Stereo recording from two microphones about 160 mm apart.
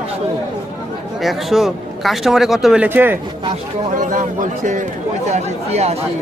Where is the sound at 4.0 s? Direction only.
50° right (ahead or behind).